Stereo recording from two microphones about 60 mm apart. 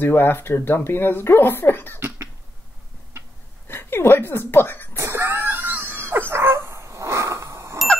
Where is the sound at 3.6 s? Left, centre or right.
Left.